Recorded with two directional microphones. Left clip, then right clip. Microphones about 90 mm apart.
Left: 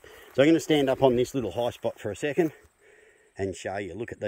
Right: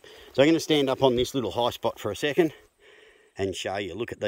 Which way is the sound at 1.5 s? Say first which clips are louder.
Right 3 dB; 25° right (ahead or behind).